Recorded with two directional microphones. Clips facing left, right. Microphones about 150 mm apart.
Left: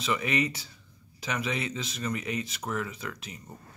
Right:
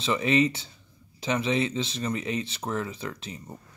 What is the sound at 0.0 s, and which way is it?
Speech, 25° right (ahead or behind).